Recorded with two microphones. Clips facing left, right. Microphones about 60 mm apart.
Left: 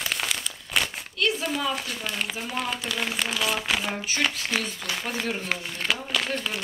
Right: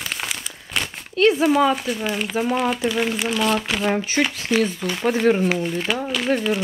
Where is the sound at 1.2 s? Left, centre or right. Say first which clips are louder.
Right 10 dB; right.